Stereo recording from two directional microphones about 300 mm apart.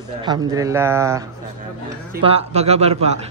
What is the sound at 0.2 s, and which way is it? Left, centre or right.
A woman's voice, centre.